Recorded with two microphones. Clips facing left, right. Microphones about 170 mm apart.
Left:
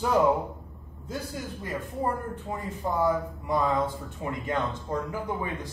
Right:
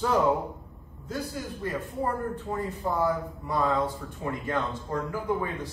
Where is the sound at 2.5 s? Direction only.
20° left (ahead or behind).